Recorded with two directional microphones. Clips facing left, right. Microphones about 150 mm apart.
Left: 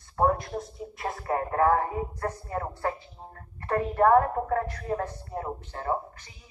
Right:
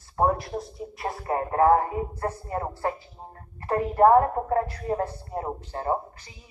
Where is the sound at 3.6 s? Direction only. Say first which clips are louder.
Right 3 dB; 25° right (ahead or behind).